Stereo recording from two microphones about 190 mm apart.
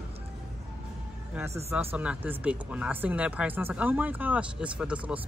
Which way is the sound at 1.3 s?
15° right (ahead or behind).